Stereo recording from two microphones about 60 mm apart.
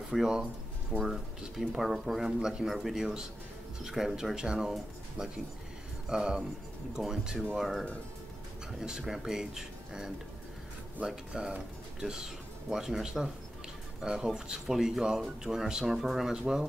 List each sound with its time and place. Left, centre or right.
0.1 s speech: centre
6.0 s speech: centre
12.6 s speech: centre